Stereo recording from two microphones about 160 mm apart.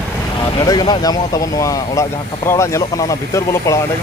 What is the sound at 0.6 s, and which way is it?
Speech, 25° left (ahead or behind).